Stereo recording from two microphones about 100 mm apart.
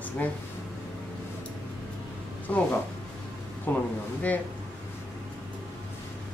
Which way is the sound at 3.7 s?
20° left (ahead or behind).